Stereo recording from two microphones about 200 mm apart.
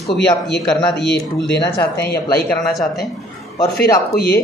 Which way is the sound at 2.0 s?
50° left (ahead or behind).